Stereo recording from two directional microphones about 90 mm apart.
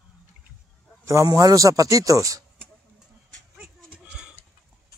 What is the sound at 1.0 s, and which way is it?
A man's voice, 40° right (ahead or behind).